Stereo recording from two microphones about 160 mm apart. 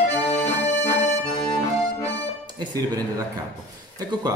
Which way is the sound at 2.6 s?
25° right (ahead or behind).